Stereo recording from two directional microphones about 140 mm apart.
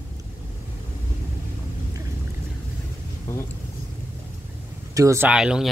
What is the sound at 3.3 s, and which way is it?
Speech, 20° left (ahead or behind).